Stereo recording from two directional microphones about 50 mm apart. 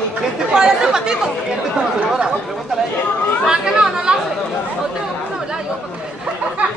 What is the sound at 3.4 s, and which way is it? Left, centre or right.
Speech, centre.